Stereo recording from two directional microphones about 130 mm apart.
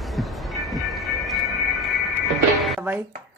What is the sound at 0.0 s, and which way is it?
Train, centre (ahead or behind).